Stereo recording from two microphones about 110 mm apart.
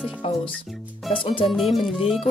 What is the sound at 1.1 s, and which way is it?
Speech, 55° left (ahead or behind).